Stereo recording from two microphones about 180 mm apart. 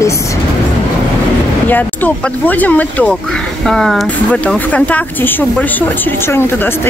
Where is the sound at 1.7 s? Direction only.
10° left (ahead or behind).